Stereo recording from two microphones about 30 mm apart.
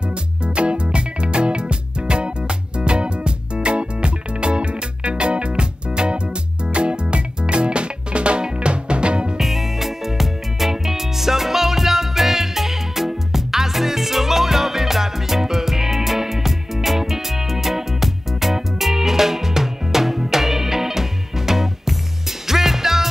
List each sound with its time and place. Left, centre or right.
0.1 s music: right
9.4 s music: centre